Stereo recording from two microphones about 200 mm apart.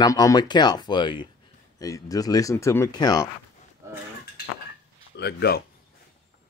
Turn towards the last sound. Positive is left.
turn(degrees=55)  # may be behind; listen again after turning